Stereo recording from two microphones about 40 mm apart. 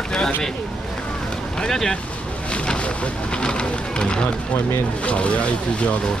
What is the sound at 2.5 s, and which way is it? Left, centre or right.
Boat, left.